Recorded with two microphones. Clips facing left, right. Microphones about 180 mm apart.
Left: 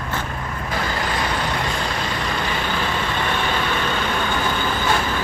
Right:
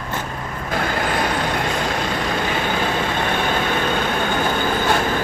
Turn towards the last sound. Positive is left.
turn(degrees=-50)  # may be behind; listen again after turning